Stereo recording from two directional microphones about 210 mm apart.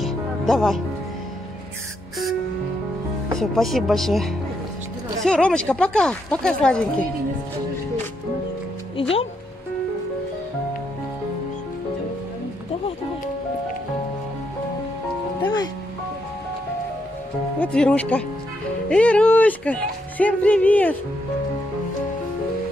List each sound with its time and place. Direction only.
0.0 s music: centre (ahead or behind)
3.3 s speech: centre (ahead or behind)
15.4 s music: 20° left (ahead or behind)
17.6 s speech: 5° left (ahead or behind)